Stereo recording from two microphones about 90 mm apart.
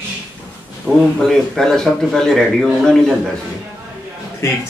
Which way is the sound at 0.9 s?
25° right (ahead or behind).